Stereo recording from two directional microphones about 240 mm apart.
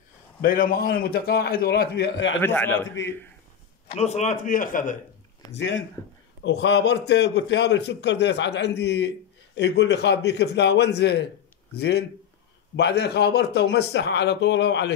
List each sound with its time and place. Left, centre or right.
0.4 s a man's voice: left
2.4 s a man's voice: centre
3.0 s a man's voice: left
3.9 s a man's voice: left
5.5 s a man's voice: left